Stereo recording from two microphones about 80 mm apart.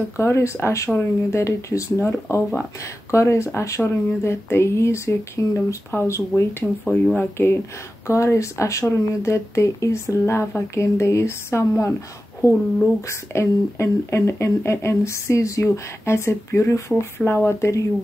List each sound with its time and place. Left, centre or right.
0.2 s speech: left
6.6 s speech: left
7.2 s speech: left
12.4 s speech: left
13.3 s speech: left